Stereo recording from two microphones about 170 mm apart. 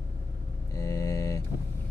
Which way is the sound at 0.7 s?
20° left (ahead or behind).